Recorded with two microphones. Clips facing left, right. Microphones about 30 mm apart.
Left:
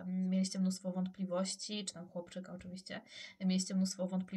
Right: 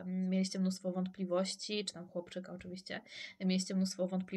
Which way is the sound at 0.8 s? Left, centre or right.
Centre.